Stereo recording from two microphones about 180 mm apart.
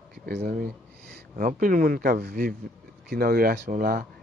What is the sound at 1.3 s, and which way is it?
Speech, 50° right (ahead or behind).